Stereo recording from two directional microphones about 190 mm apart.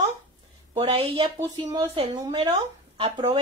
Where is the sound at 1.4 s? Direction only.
20° right (ahead or behind).